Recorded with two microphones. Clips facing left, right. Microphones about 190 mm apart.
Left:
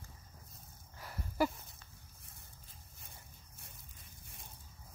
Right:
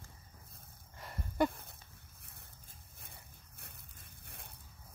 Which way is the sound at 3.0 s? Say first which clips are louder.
Right 1 dB; 60° right (ahead or behind).